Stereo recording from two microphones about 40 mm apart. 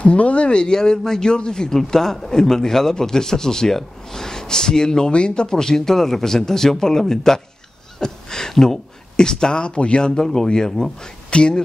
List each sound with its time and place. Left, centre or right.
0.0 s a man's voice: left
10.2 s a man's voice: centre